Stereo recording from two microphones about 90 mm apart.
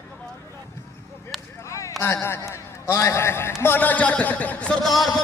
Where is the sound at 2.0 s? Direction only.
25° left (ahead or behind).